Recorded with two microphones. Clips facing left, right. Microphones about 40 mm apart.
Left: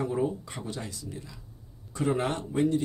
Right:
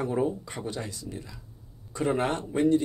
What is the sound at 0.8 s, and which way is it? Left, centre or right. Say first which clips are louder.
Speech: right 2 dB; right.